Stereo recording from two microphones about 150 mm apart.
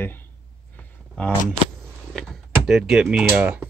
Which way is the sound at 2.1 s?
Centre (ahead or behind).